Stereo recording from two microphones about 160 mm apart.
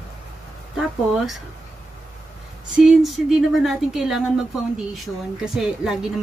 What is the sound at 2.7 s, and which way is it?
A woman's voice, 5° right (ahead or behind).